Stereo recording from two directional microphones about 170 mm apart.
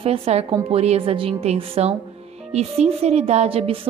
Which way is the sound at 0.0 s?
35° right (ahead or behind).